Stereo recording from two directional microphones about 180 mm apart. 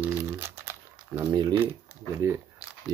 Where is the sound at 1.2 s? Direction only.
20° right (ahead or behind).